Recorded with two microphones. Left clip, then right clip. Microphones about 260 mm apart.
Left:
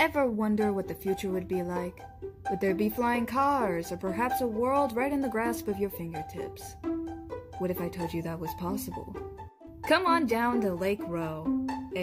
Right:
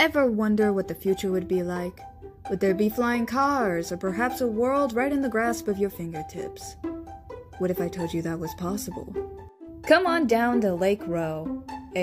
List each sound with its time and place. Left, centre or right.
0.0 s speech: centre
7.6 s speech: centre
9.8 s speech: centre